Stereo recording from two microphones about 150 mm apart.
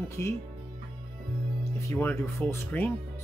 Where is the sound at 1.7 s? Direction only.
15° left (ahead or behind).